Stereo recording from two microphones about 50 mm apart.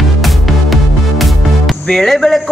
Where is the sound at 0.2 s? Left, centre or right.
Centre.